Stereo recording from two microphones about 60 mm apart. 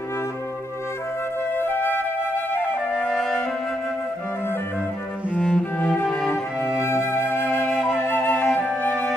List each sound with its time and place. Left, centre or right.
1.6 s flute: left
3.1 s music: centre
5.4 s cello: centre
6.0 s music: centre
6.8 s flute: left
7.6 s flute: centre
7.9 s flute: left